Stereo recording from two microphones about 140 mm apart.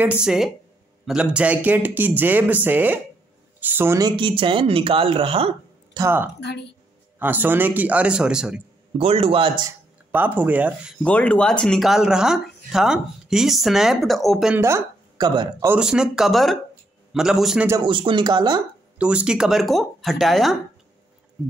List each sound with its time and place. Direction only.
0.0 s a man's voice: 5° right (ahead or behind)
4.0 s speech: 35° right (ahead or behind)
5.9 s a man's voice: 15° right (ahead or behind)
8.9 s speech: 45° right (ahead or behind)
10.1 s a man's voice: 15° right (ahead or behind)
11.0 s speech: 10° left (ahead or behind)
14.6 s speech: 25° right (ahead or behind)
15.8 s speech: 5° right (ahead or behind)
17.8 s speech: 35° right (ahead or behind)
18.9 s speech: 10° right (ahead or behind)